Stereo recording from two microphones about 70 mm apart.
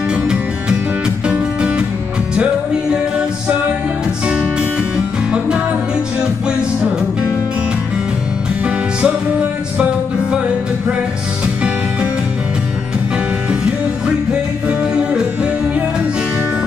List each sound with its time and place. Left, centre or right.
0.1 s music: centre
8.6 s music: centre
11.4 s music: centre
13.5 s music: centre